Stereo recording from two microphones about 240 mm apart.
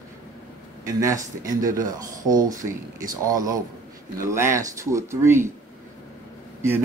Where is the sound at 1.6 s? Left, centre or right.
Right.